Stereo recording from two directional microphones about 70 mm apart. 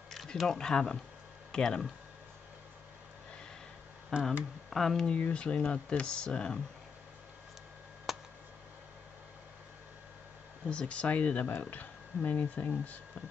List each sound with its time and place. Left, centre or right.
0.1 s speech: centre
4.1 s speech: centre
8.1 s a sound: centre
10.7 s speech: centre